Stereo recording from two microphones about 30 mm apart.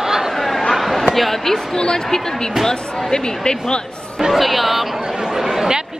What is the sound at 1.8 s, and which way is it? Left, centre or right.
Speech, left.